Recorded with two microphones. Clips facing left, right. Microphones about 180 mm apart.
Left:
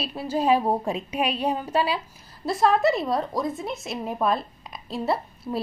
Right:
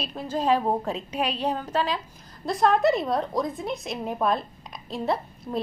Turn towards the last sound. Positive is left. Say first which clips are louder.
# left 1 dB
turn(degrees=5)  # may be behind; listen again after turning